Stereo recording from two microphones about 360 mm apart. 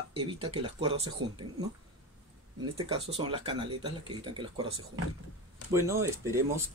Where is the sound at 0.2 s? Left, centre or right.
Centre.